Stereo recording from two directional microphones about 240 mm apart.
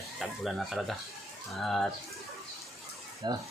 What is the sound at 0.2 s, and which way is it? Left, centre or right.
Speech, centre.